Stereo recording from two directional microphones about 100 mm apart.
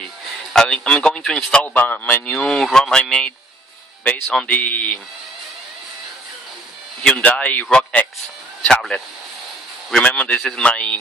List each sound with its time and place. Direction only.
0.5 s a man's voice: 5° left (ahead or behind)
1.6 s a man's voice: 15° left (ahead or behind)
2.3 s a man's voice: 5° left (ahead or behind)
7.0 s a man's voice: 15° left (ahead or behind)
8.6 s a man's voice: 5° left (ahead or behind)